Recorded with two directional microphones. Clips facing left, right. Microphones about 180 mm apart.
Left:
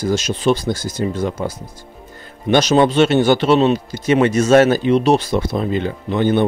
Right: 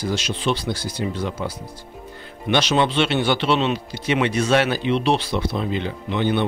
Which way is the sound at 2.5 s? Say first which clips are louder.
Left 6 dB; 45° left (ahead or behind).